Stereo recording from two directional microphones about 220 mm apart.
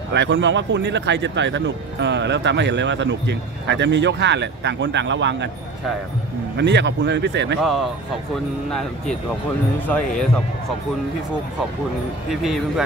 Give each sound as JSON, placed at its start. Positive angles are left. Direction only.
{"t": 0.1, "sound": "speech", "side_deg": -55}
{"t": 6.5, "sound": "speech", "side_deg": -50}
{"t": 7.6, "sound": "speech", "side_deg": 0}
{"t": 9.8, "sound": "speech", "side_deg": 5}
{"t": 12.3, "sound": "speech", "side_deg": 0}